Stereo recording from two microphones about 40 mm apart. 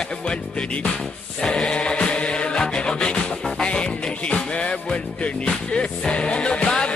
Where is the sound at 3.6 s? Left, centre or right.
Left.